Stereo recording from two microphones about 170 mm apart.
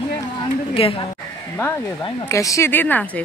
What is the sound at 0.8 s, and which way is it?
Speech, 35° left (ahead or behind).